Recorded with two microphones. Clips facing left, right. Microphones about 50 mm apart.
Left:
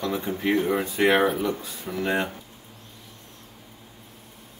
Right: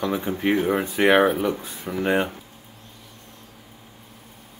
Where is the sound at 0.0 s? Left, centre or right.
Centre.